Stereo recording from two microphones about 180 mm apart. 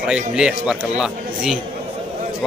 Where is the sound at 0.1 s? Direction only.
5° right (ahead or behind).